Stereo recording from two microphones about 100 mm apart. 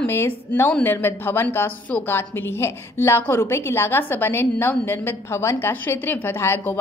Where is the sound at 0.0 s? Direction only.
25° left (ahead or behind).